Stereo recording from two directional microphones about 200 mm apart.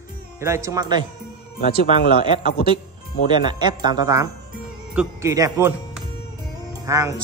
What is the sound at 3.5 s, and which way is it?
Speech, 20° right (ahead or behind).